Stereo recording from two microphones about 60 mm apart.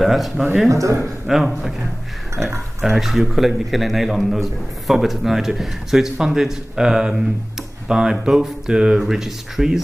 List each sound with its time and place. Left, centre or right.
0.0 s a man's voice: centre
0.7 s a man's voice: right
0.9 s a man's voice: centre
2.8 s a man's voice: centre